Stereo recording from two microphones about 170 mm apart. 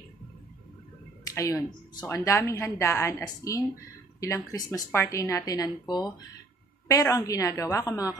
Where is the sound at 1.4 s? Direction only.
20° left (ahead or behind).